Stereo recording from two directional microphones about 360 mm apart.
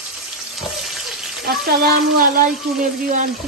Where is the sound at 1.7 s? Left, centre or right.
Right.